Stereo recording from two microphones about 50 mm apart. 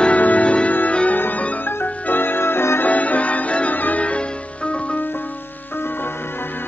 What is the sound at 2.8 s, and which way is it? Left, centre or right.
Music, left.